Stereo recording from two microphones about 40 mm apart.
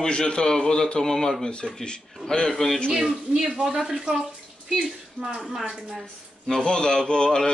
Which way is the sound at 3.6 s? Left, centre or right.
Centre.